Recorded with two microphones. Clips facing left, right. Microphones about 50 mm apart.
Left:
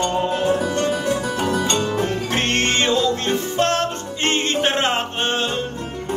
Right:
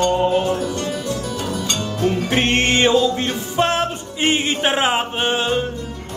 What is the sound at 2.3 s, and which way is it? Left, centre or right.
Music, centre.